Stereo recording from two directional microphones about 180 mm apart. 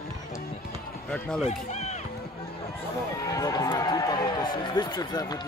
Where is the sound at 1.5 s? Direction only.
40° left (ahead or behind).